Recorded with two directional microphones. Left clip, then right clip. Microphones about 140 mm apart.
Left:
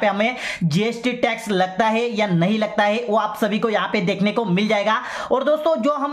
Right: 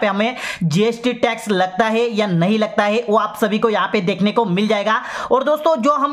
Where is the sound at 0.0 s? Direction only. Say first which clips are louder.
Right 1 dB; 35° right (ahead or behind).